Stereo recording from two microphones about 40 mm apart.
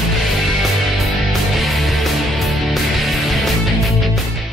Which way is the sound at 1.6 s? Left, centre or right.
Centre.